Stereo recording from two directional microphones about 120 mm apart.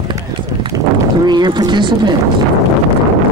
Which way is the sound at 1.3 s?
35° right (ahead or behind).